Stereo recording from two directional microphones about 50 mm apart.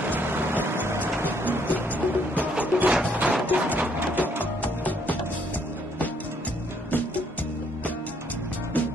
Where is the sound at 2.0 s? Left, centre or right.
Right.